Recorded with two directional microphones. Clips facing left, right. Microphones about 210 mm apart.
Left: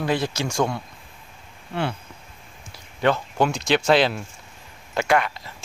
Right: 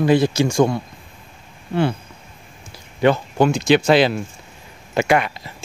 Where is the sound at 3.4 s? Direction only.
5° right (ahead or behind).